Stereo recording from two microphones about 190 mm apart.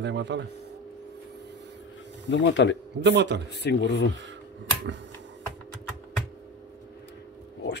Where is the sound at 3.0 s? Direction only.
65° right (ahead or behind).